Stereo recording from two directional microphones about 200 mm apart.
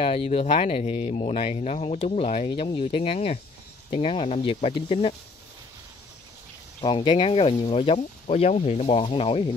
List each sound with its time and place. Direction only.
0.0 s speech: 30° left (ahead or behind)
6.8 s speech: 25° left (ahead or behind)